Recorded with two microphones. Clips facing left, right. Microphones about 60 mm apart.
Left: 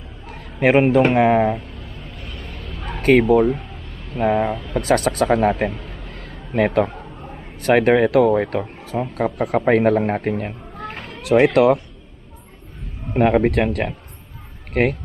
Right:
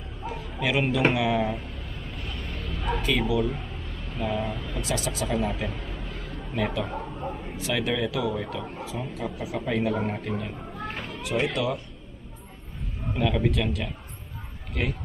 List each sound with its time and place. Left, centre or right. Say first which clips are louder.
0.3 s bow-wow: left 11 dB; left
1.1 s speech: left 10 dB; left
2.2 s vehicle: left 2 dB; centre
3.0 s speech: left 13 dB; left
11.1 s speech: left 13 dB; left
13.1 s speech: left 10 dB; left